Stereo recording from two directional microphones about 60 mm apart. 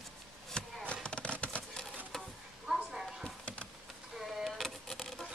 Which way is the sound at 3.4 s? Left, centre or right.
Centre.